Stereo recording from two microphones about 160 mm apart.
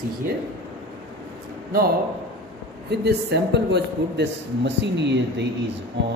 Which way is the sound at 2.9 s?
90° right.